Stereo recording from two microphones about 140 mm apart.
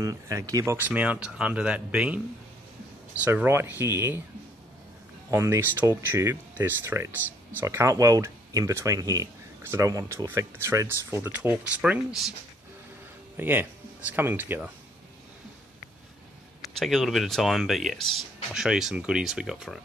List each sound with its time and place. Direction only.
0.0 s speech: 25° right (ahead or behind)
0.7 s speech: 10° right (ahead or behind)
3.2 s speech: 15° right (ahead or behind)
5.3 s speech: 20° right (ahead or behind)
13.4 s speech: 15° right (ahead or behind)
16.7 s speech: centre (ahead or behind)